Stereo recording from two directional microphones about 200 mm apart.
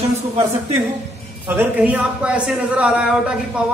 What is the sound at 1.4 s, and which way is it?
Speech, 10° right (ahead or behind).